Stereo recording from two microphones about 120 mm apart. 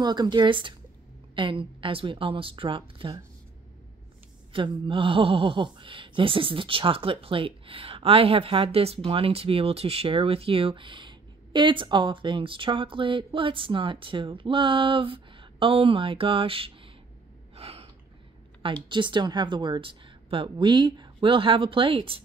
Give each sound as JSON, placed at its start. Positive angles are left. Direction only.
{"t": 0.0, "sound": "speech", "side_deg": -35}
{"t": 4.5, "sound": "speech", "side_deg": -45}
{"t": 17.6, "sound": "gasp", "side_deg": -55}
{"t": 18.9, "sound": "speech", "side_deg": -40}